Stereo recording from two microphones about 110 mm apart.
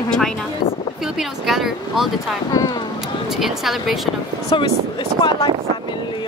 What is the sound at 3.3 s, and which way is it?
Speech, centre (ahead or behind).